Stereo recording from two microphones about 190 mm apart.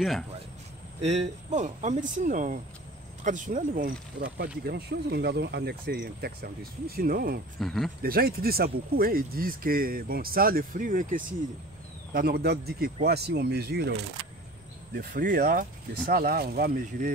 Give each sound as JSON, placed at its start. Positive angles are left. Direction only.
{"t": 1.0, "sound": "speech", "side_deg": -35}
{"t": 7.6, "sound": "speech", "side_deg": 0}
{"t": 8.0, "sound": "speech", "side_deg": -55}
{"t": 15.0, "sound": "speech", "side_deg": -50}